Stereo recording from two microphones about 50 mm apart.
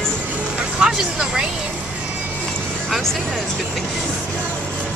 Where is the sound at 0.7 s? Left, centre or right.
Centre.